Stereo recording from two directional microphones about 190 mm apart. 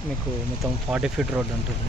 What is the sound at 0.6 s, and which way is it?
Speech, 5° right (ahead or behind).